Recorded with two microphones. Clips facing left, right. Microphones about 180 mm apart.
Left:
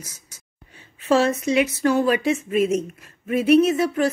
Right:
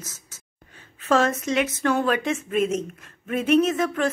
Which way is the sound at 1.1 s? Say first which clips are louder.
Left 2 dB; 45° right (ahead or behind).